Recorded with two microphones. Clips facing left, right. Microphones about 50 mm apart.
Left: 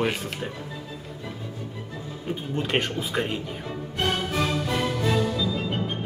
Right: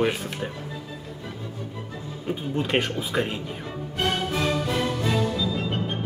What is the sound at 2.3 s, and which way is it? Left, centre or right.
Speech, centre.